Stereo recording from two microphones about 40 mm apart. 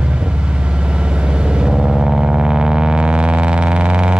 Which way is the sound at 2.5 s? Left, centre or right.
Centre.